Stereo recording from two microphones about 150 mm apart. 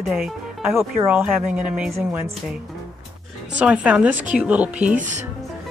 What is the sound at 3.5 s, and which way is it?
Speech, 10° right (ahead or behind).